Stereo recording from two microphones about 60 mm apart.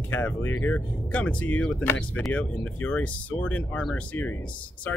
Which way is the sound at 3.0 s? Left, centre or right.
Left.